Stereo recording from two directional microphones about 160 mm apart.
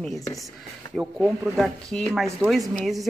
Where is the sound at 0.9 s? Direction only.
Centre (ahead or behind).